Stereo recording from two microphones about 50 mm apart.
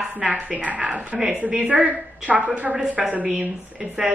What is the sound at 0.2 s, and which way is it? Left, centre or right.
A woman's voice, right.